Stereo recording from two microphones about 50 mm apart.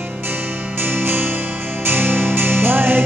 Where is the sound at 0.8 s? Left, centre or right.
Right.